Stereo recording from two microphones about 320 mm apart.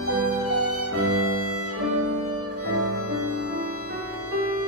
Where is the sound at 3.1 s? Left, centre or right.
Right.